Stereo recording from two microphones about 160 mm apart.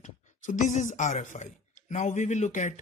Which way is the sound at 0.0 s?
55° left (ahead or behind).